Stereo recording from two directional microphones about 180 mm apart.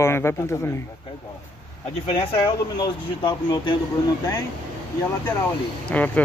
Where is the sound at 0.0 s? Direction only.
15° left (ahead or behind).